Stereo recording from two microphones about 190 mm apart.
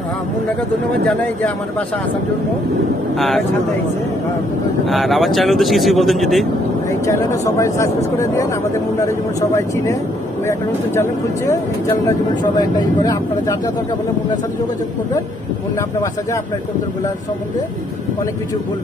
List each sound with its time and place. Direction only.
3.2 s speech: centre (ahead or behind)
4.8 s speech: centre (ahead or behind)
7.1 s speech: 15° left (ahead or behind)
11.0 s speech: 15° left (ahead or behind)